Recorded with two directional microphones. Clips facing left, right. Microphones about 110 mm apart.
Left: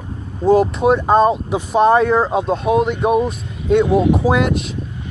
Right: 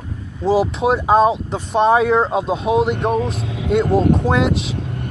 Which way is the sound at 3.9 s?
50° right (ahead or behind).